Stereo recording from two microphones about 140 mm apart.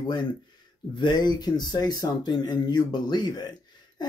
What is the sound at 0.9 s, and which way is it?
Speech, 30° left (ahead or behind).